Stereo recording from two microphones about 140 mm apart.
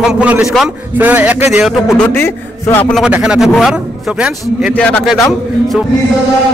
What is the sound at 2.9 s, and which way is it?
Speech, 5° right (ahead or behind).